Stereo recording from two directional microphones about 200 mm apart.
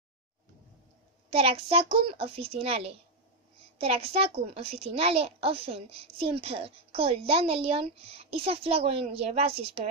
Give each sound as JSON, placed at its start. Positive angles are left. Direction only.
{"t": 1.3, "sound": "a woman's voice", "side_deg": -30}